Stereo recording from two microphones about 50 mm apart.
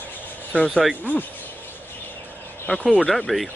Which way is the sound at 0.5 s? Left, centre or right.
Left.